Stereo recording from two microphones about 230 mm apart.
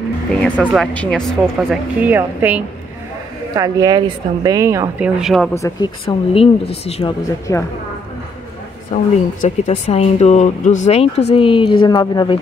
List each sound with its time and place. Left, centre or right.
0.4 s speech: centre
5.5 s speech: centre
6.0 s speech: left
7.5 s speech: centre
8.9 s speech: left